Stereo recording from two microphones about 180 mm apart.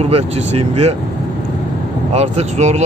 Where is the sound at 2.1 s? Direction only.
35° right (ahead or behind).